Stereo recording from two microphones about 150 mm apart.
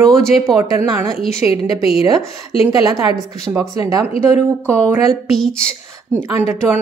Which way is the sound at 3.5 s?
20° right (ahead or behind).